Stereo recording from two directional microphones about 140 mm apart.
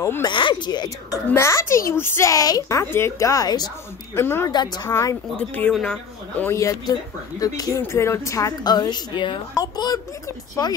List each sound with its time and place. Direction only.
0.0 s speech: 20° left (ahead or behind)
0.3 s speech: 35° left (ahead or behind)
4.1 s speech: 15° left (ahead or behind)
4.5 s speech: 30° left (ahead or behind)
5.5 s speech: 5° left (ahead or behind); by 10.7 s 25° left (ahead or behind)